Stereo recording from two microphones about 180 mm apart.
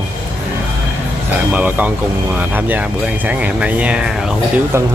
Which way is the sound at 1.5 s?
10° right (ahead or behind).